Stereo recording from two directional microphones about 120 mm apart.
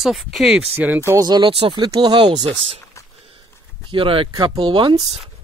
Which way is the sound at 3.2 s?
50° right (ahead or behind).